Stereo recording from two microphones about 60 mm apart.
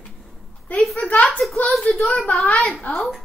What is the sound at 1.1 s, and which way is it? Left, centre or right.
Speech, left.